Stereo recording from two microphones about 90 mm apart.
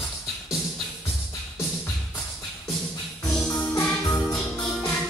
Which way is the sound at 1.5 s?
30° left (ahead or behind).